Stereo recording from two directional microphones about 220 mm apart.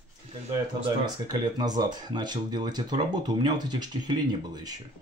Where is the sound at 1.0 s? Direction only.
20° right (ahead or behind).